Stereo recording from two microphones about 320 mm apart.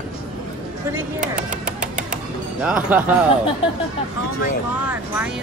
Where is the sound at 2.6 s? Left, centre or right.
Centre.